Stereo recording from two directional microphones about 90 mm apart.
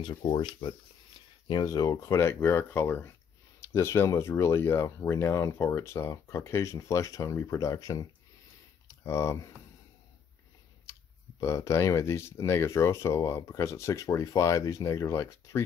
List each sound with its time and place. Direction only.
0.0 s speech: 55° left (ahead or behind)
1.5 s speech: 45° left (ahead or behind)
8.8 s speech: 30° left (ahead or behind)
10.9 s speech: 35° left (ahead or behind)